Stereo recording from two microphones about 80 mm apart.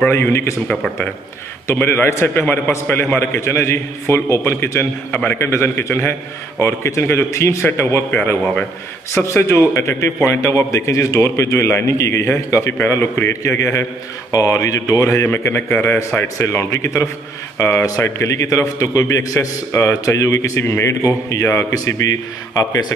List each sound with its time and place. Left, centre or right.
0.1 s a man's voice: left
1.8 s a man's voice: left
9.1 s a man's voice: left